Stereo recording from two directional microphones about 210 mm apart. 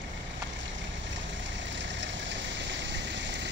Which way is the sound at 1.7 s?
60° right (ahead or behind).